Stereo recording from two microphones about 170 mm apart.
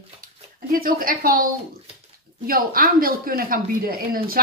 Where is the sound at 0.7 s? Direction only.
55° right (ahead or behind).